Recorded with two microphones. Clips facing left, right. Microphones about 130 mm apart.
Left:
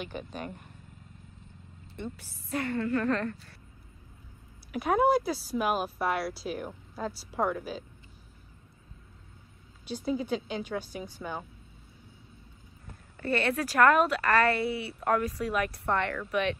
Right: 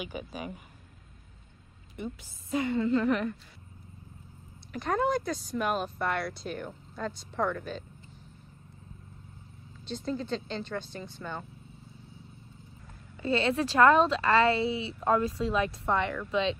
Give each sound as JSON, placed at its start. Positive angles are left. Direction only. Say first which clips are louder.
{"t": 0.0, "sound": "a woman's voice", "louder": "even", "side_deg": -5}
{"t": 2.0, "sound": "a woman's voice", "louder": "right 1 dB", "side_deg": -15}
{"t": 4.7, "sound": "speech", "louder": "left 4 dB", "side_deg": 5}
{"t": 9.8, "sound": "speech", "louder": "left 2 dB", "side_deg": 10}
{"t": 13.2, "sound": "speech", "louder": "right 1 dB", "side_deg": -20}